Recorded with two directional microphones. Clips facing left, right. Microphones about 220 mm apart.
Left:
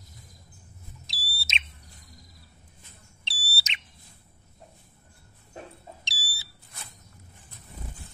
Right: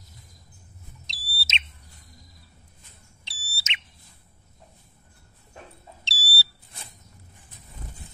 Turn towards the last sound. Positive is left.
turn(degrees=15)  # may be behind; listen again after turning